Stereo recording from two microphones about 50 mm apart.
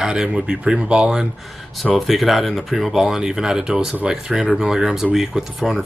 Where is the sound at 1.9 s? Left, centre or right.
Centre.